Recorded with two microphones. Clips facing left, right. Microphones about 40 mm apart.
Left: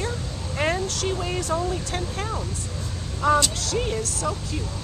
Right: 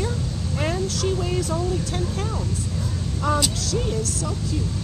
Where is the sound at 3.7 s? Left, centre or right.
Left.